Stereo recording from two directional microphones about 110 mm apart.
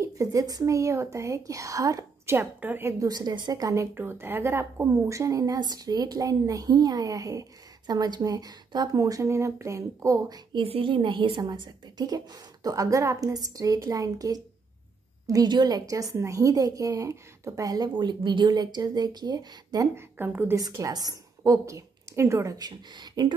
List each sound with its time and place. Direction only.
0.0 s a woman's voice: 30° right (ahead or behind)
2.3 s a woman's voice: 20° right (ahead or behind)
3.1 s a woman's voice: 40° right (ahead or behind)
10.6 s a woman's voice: 55° right (ahead or behind); by 19.9 s 35° right (ahead or behind)
20.0 s a woman's voice: 20° right (ahead or behind)
20.5 s a woman's voice: 35° right (ahead or behind)